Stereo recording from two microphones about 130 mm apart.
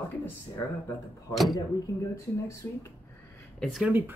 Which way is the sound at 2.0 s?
25° left (ahead or behind).